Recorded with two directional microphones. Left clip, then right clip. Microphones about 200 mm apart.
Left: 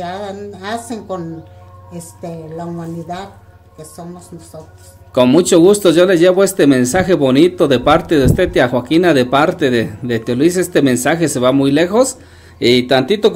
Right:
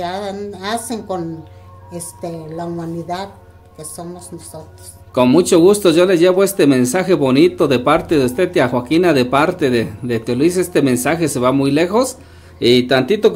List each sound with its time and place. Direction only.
0.0 s a woman's voice: 20° right (ahead or behind)
5.1 s speech: 10° left (ahead or behind)